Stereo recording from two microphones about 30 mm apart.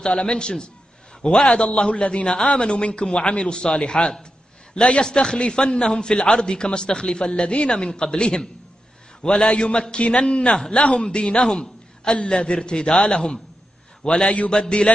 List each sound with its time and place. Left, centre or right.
0.0 s speech: left
1.7 s a man's voice: left